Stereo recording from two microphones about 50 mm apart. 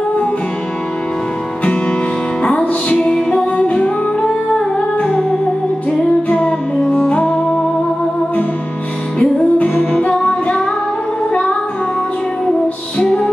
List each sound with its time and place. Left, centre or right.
1.6 s music: left
4.7 s humming: left
6.2 s music: left
9.2 s music: left
13.0 s music: centre